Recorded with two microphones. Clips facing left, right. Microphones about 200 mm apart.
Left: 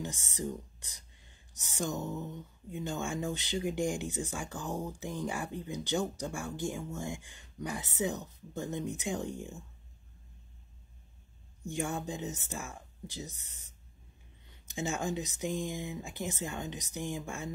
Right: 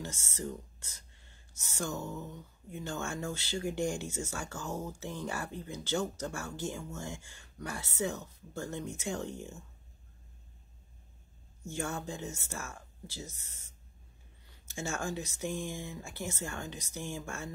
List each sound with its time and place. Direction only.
0.0 s speech: 15° left (ahead or behind)
11.6 s speech: 15° left (ahead or behind)